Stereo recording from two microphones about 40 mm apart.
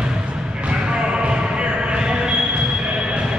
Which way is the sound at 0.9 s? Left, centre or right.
Right.